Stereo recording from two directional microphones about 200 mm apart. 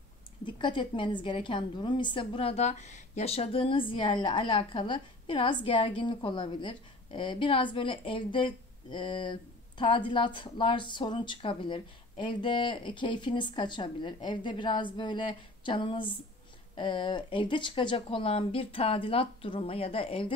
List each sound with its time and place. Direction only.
0.5 s a woman's voice: 25° left (ahead or behind)